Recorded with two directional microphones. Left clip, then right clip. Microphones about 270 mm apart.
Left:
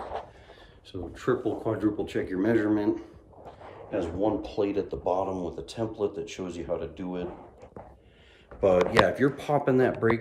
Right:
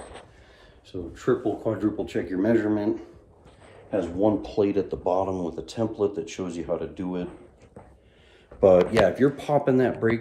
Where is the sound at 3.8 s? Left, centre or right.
Centre.